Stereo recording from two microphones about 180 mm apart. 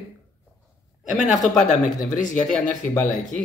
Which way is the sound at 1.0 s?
5° right (ahead or behind).